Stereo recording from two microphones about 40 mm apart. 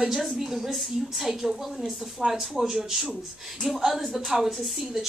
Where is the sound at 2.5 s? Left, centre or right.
Centre.